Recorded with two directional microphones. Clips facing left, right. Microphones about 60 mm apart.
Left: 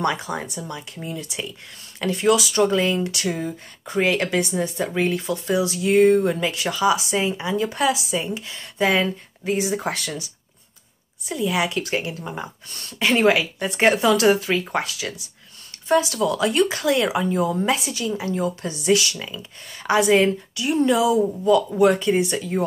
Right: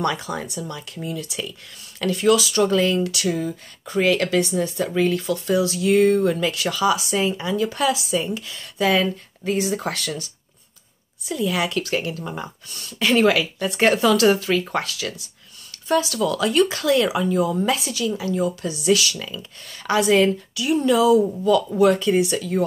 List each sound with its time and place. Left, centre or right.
0.0 s speech: left